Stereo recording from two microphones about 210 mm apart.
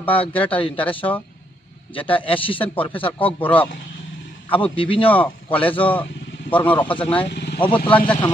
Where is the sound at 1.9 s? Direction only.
25° left (ahead or behind).